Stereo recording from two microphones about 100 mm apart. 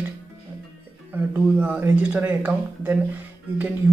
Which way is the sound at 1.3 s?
15° right (ahead or behind).